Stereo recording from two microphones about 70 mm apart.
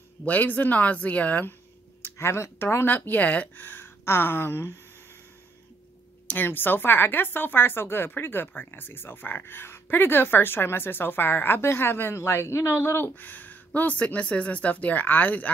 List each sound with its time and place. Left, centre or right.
0.2 s speech: left
2.0 s speech: left
6.2 s speech: left